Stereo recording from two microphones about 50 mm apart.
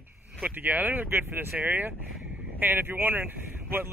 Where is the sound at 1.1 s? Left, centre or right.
Right.